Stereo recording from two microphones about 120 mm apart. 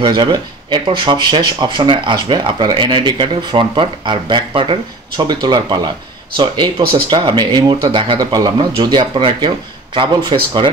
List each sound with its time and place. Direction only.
0.0 s speech: 40° right (ahead or behind)